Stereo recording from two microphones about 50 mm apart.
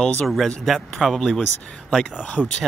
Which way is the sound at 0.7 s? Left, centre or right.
Centre.